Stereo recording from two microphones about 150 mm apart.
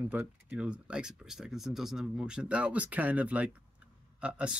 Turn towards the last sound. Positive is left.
turn(degrees=-5)  # may be behind; listen again after turning